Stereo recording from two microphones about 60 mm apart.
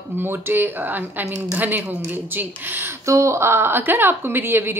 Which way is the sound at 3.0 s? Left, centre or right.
Right.